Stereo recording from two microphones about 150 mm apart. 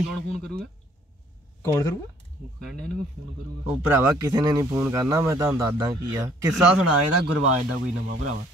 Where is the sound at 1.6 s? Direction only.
20° left (ahead or behind).